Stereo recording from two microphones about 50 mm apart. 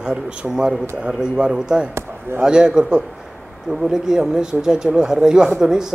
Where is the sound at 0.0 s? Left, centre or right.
Centre.